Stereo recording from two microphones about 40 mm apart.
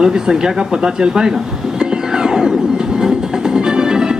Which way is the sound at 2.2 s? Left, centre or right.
Centre.